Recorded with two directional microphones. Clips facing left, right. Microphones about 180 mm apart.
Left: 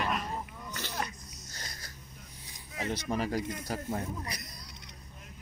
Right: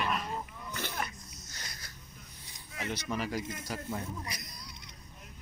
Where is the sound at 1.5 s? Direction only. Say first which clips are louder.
Left 3 dB; 45° left (ahead or behind).